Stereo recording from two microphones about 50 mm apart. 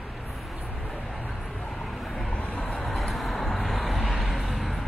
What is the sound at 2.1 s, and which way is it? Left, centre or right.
Vehicle, centre.